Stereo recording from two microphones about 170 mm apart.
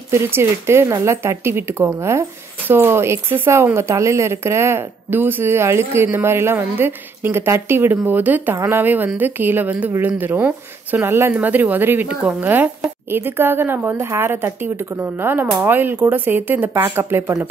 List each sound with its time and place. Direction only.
0.1 s speech: 15° right (ahead or behind)